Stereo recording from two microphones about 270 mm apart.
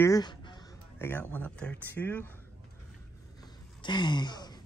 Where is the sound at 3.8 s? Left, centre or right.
Centre.